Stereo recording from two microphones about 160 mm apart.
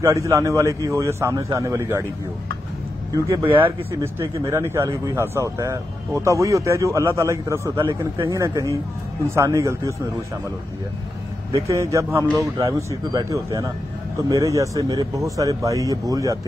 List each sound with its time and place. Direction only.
0.0 s speech: 20° right (ahead or behind)
4.5 s a man's voice: 15° right (ahead or behind)
11.6 s speech: 20° right (ahead or behind)